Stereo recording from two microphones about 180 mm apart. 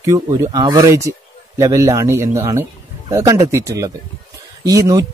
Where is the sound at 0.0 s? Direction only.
20° right (ahead or behind).